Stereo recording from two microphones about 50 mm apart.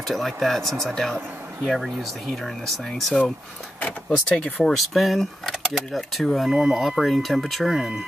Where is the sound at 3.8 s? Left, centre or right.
Left.